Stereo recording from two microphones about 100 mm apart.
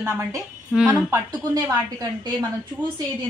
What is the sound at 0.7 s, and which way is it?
Speech, 10° right (ahead or behind).